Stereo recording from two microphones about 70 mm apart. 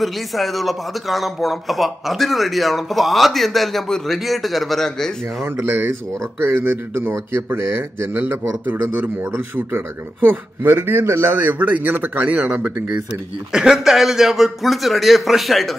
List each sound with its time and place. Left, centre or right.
0.0 s speech: centre
5.6 s speech: right
11.3 s speech: right
13.5 s speech: centre